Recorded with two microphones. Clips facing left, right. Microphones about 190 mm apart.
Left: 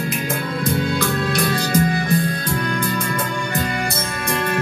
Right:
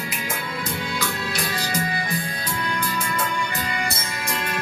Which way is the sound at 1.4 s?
50° left (ahead or behind).